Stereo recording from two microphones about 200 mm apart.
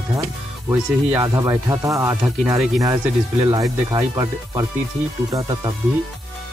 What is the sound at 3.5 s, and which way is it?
Speech, 20° right (ahead or behind).